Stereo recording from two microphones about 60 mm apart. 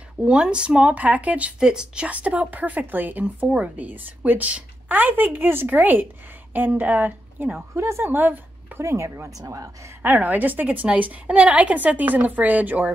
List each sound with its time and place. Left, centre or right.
0.2 s a woman's voice: centre
2.0 s a woman's voice: right
7.7 s speech: right
8.1 s speech: right
8.8 s speech: right
10.0 s a woman's voice: right